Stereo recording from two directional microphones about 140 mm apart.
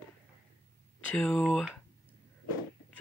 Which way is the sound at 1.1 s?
10° left (ahead or behind).